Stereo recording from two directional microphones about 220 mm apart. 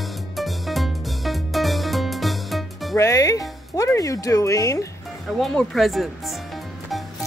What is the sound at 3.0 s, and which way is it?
Speech, 15° left (ahead or behind).